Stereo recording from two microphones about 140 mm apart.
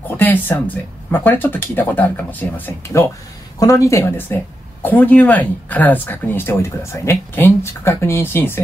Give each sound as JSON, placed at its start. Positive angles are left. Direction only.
{"t": 0.2, "sound": "speech", "side_deg": 15}